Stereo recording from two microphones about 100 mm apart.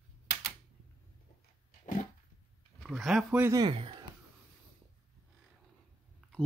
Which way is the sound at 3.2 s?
15° right (ahead or behind).